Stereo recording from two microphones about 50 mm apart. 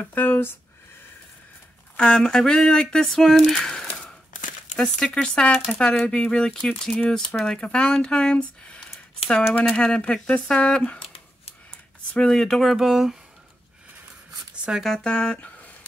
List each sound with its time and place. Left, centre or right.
0.0 s speech: left
2.0 s speech: centre
12.3 s speech: centre
12.6 s speech: centre
14.7 s speech: centre
15.0 s speech: centre